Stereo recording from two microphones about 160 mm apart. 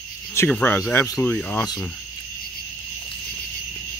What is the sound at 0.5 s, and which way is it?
Speech, 10° left (ahead or behind).